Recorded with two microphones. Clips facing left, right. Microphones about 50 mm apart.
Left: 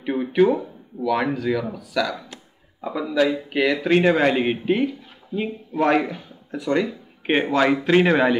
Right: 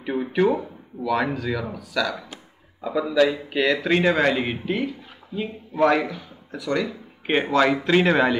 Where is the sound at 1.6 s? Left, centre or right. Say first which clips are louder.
Left 2 dB; centre.